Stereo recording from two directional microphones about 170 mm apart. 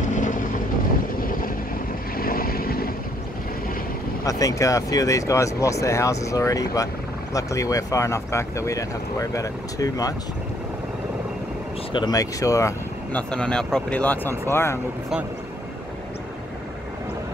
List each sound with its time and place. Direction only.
0.1 s vehicle: 50° left (ahead or behind)
4.2 s speech: 20° left (ahead or behind)
11.9 s speech: 25° left (ahead or behind)
13.3 s speech: 5° left (ahead or behind)